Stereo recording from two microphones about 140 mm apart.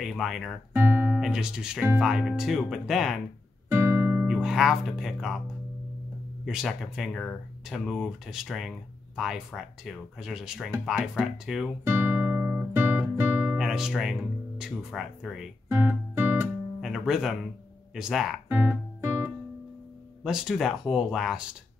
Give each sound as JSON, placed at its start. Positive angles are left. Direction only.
{"t": 0.0, "sound": "speech", "side_deg": 0}
{"t": 0.7, "sound": "speech", "side_deg": -15}
{"t": 3.6, "sound": "music", "side_deg": -20}
{"t": 4.3, "sound": "speech", "side_deg": -5}
{"t": 6.4, "sound": "speech", "side_deg": 0}
{"t": 11.8, "sound": "guitar", "side_deg": -20}
{"t": 13.6, "sound": "speech", "side_deg": -5}
{"t": 15.7, "sound": "guitar", "side_deg": -15}
{"t": 16.8, "sound": "speech", "side_deg": -5}
{"t": 18.5, "sound": "music", "side_deg": -10}
{"t": 20.2, "sound": "speech", "side_deg": -5}